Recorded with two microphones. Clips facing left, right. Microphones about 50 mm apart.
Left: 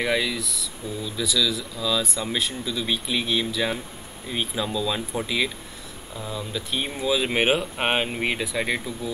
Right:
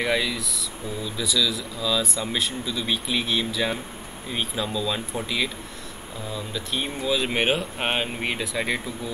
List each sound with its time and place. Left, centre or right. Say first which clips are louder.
0.0 s speech: even; centre